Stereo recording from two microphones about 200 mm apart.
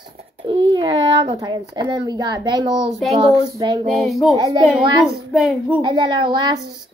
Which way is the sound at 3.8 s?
Centre (ahead or behind).